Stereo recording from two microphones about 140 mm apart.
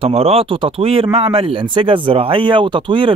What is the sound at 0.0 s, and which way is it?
Speech, 45° right (ahead or behind).